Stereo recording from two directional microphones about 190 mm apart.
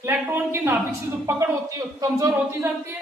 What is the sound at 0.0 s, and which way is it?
Speech, 10° right (ahead or behind).